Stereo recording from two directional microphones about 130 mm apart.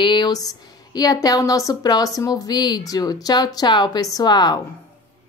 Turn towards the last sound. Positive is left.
turn(degrees=35)  # may be behind; listen again after turning